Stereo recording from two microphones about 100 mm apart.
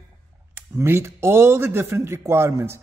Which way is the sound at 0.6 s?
25° right (ahead or behind).